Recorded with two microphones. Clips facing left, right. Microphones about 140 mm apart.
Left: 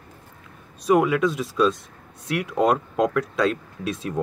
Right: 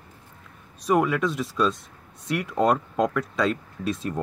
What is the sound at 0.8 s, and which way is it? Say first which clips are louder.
Speech: left 3 dB; 5° left (ahead or behind).